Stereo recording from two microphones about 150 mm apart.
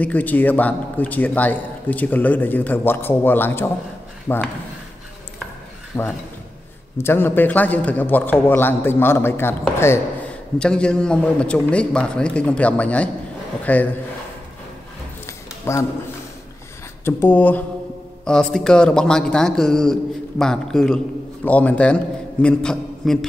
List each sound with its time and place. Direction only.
0.0 s a man's voice: 10° left (ahead or behind)
5.9 s pulleys: 25° left (ahead or behind)
7.0 s a man's voice: 15° left (ahead or behind)
15.2 s a sound: 20° left (ahead or behind)
17.0 s a man's voice: 15° left (ahead or behind)